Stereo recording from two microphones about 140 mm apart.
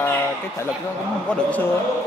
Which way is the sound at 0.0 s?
15° left (ahead or behind).